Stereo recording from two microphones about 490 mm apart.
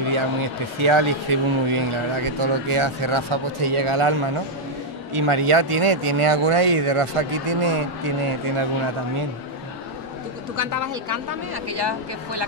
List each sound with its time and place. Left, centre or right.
0.0 s a man's voice: right
10.5 s a woman's voice: right